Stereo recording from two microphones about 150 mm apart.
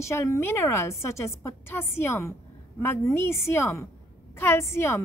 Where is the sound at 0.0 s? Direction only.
20° left (ahead or behind).